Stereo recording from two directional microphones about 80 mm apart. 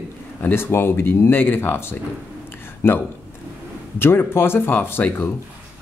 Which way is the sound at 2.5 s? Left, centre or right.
Left.